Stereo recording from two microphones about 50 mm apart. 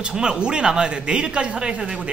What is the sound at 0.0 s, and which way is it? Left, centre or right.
A man's voice, centre.